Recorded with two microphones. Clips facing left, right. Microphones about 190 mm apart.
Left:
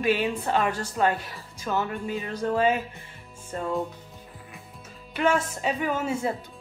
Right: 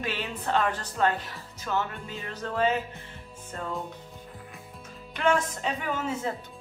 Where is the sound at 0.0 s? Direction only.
10° left (ahead or behind).